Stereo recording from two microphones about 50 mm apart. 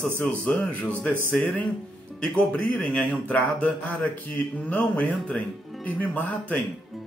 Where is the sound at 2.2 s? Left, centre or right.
Centre.